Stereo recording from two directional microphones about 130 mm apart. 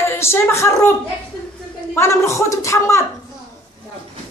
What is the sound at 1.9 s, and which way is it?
A woman's voice, 20° left (ahead or behind).